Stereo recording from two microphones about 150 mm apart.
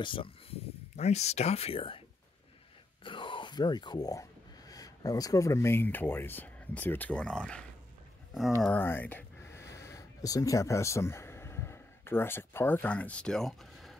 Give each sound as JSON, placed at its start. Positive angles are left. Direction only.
{"t": 0.0, "sound": "speech", "side_deg": 35}
{"t": 8.6, "sound": "speech", "side_deg": 15}